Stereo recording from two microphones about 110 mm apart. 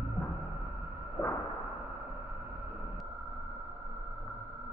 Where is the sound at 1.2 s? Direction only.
40° left (ahead or behind).